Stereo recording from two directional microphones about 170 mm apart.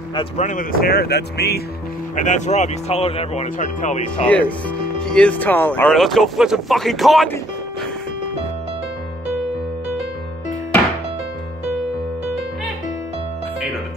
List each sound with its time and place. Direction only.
0.4 s speech: 50° left (ahead or behind); by 1.6 s 75° left (ahead or behind)
2.2 s speech: 45° left (ahead or behind)
3.4 s speech: 50° left (ahead or behind)
4.3 s speech: 10° left (ahead or behind)